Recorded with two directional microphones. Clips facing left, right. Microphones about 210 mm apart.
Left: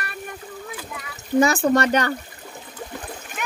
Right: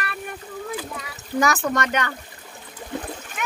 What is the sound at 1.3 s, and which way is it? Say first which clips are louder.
Speech: left 5 dB; 30° left (ahead or behind).